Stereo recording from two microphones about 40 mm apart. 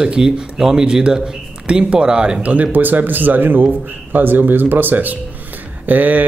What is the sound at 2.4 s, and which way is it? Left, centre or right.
A man's voice, right.